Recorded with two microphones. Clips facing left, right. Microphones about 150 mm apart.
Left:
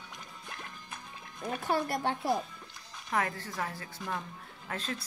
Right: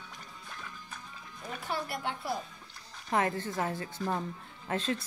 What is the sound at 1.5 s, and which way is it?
Speech, 45° left (ahead or behind).